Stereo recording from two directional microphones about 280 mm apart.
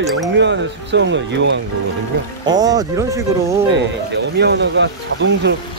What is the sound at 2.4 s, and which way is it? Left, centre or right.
Speech, centre.